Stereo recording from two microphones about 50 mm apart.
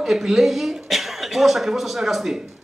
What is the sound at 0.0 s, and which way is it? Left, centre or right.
Speech, centre.